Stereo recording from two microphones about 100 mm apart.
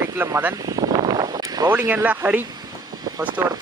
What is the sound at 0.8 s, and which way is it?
Vehicle, 45° right (ahead or behind).